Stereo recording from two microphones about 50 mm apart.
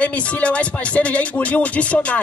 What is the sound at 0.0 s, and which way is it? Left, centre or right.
Music, left.